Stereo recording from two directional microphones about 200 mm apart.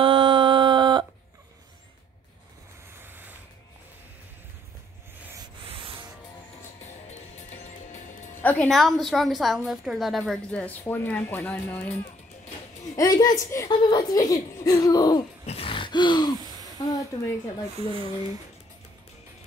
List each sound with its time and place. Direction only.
0.0 s a sound: 25° right (ahead or behind)
3.0 s ratchet: 10° right (ahead or behind)
5.6 s sanding: 25° right (ahead or behind)
6.8 s music: 35° left (ahead or behind)
8.4 s a woman's voice: 10° left (ahead or behind)
15.4 s a sound: 30° left (ahead or behind)
17.7 s speech: 25° right (ahead or behind)